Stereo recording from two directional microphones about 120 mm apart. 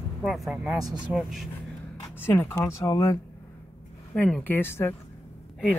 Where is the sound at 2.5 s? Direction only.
30° left (ahead or behind).